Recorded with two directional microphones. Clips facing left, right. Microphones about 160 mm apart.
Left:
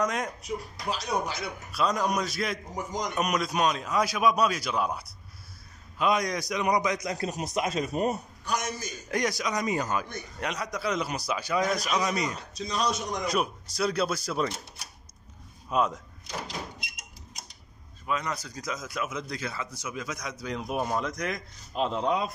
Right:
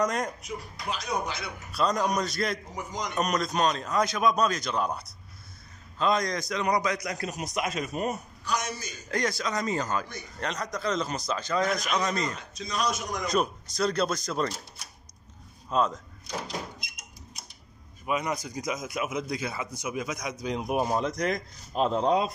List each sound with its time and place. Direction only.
0.0 s a man's voice: centre (ahead or behind)
0.4 s speech: 35° left (ahead or behind)
1.7 s a man's voice: 5° left (ahead or behind)
2.7 s a man's voice: 45° left (ahead or behind)
3.2 s a man's voice: 10° left (ahead or behind); by 8.2 s 35° left (ahead or behind)
8.5 s a man's voice: 50° left (ahead or behind)
9.1 s a man's voice: 15° left (ahead or behind)
12.4 s speech: 35° left (ahead or behind)
13.2 s a man's voice: 5° left (ahead or behind)
15.7 s a man's voice: 10° left (ahead or behind)
18.0 s speech: 10° right (ahead or behind)
21.2 s speech: 40° right (ahead or behind)